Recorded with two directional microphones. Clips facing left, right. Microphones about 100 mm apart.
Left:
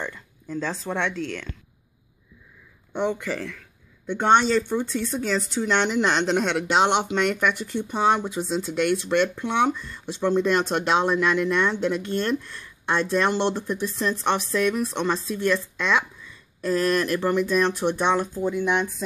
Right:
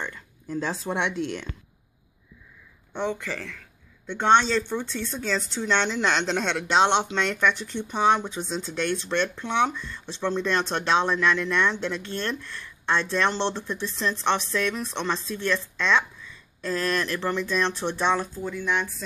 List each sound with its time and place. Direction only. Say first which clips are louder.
0.5 s speech: even; 10° right (ahead or behind)
2.9 s speech: left 3 dB; 15° left (ahead or behind)